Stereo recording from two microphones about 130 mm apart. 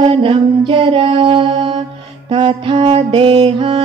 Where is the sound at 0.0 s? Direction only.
45° right (ahead or behind).